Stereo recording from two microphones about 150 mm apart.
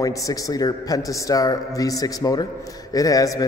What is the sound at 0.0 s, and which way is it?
A man's voice, 20° left (ahead or behind).